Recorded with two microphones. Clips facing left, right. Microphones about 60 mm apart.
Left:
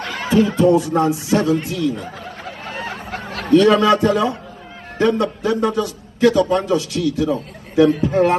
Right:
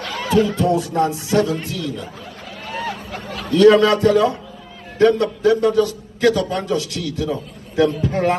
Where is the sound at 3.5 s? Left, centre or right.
Left.